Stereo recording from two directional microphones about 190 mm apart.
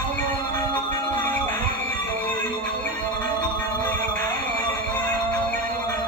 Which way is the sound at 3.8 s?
10° left (ahead or behind).